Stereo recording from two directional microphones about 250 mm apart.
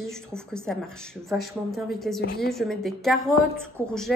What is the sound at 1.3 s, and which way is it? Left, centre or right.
Speech, centre.